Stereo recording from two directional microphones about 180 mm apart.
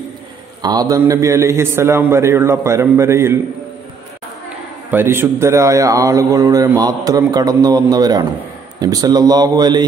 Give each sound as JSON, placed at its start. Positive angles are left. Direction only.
{"t": 0.6, "sound": "a man's voice", "side_deg": -20}
{"t": 4.9, "sound": "a man's voice", "side_deg": -10}